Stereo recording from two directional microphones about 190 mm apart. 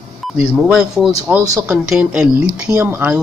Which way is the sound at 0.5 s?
5° right (ahead or behind).